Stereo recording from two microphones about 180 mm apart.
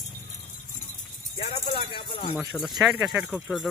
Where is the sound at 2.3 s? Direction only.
Centre (ahead or behind).